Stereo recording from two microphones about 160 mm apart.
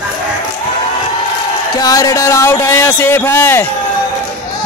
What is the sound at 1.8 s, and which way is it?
A man's voice, 20° left (ahead or behind).